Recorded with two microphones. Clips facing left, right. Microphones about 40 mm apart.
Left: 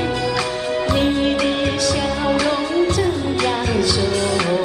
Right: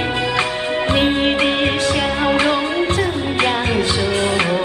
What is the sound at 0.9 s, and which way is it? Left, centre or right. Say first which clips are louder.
Music: right 2 dB; right.